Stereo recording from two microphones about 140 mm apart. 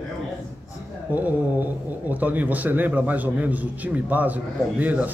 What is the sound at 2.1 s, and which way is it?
A man's voice, 10° right (ahead or behind).